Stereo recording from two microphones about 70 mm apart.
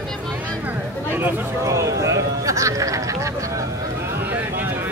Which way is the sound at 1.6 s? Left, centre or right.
Right.